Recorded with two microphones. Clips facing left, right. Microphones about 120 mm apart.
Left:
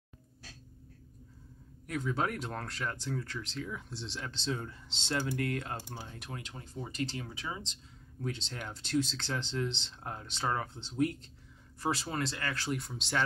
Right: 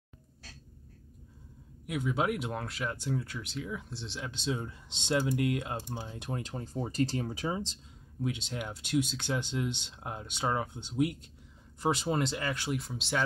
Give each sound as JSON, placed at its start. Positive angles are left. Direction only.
{"t": 1.9, "sound": "speech", "side_deg": -10}
{"t": 6.4, "sound": "speech", "side_deg": -40}
{"t": 8.2, "sound": "speech", "side_deg": -10}
{"t": 12.7, "sound": "speech", "side_deg": -5}